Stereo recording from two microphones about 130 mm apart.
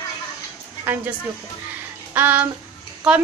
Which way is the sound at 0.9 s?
15° right (ahead or behind).